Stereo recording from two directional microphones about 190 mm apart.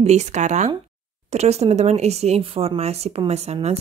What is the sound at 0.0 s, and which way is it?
Speech, 35° right (ahead or behind).